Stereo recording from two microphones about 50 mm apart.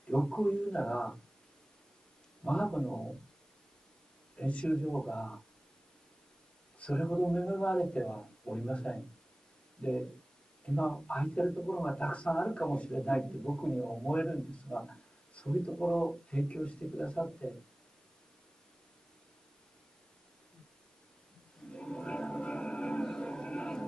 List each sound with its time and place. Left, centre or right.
0.1 s a man's voice: centre
2.4 s a man's voice: centre
4.4 s speech: left
6.8 s a man's voice: centre
21.7 s music: centre